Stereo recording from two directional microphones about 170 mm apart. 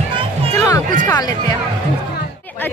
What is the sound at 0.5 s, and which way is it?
Speech, 20° left (ahead or behind).